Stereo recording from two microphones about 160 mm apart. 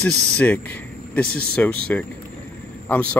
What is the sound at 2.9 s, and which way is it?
Speech, 10° left (ahead or behind).